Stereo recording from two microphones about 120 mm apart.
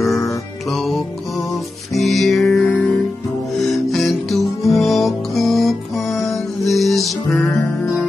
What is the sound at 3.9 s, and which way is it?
Music, centre (ahead or behind).